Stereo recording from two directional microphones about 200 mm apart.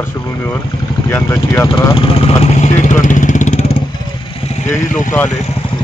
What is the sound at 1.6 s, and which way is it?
Vehicle, 25° left (ahead or behind).